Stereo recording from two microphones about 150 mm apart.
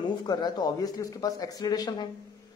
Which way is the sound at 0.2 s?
30° left (ahead or behind).